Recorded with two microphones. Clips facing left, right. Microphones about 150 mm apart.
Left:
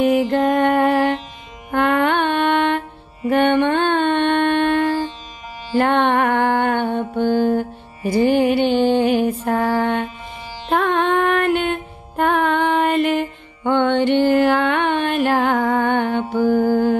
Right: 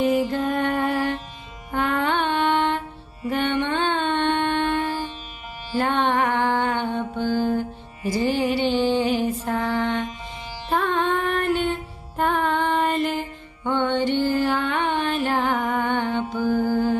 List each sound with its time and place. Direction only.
0.0 s music: 65° left (ahead or behind)
3.3 s mantra: 60° left (ahead or behind)
10.7 s music: 65° left (ahead or behind)
16.3 s mantra: 35° left (ahead or behind)